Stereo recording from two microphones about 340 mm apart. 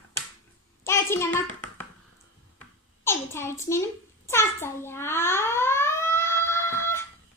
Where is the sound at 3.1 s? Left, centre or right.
Centre.